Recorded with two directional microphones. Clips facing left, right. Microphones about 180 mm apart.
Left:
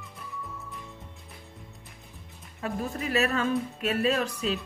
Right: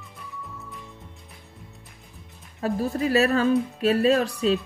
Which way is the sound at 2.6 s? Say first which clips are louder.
Right 7 dB; 35° right (ahead or behind).